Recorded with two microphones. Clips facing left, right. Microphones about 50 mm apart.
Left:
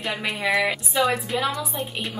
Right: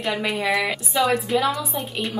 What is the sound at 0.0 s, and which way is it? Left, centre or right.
A woman's voice, centre.